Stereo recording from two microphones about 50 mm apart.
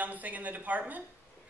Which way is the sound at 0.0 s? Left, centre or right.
Right.